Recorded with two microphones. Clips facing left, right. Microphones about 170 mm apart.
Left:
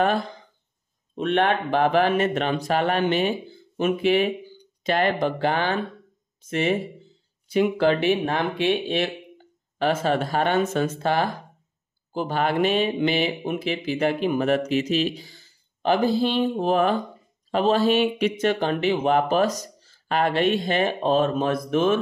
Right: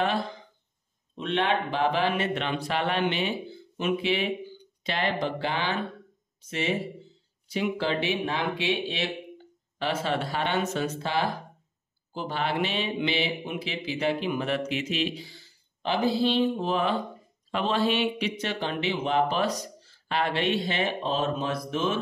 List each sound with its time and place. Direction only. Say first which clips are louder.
1.1 s speech: left 5 dB; 50° left (ahead or behind)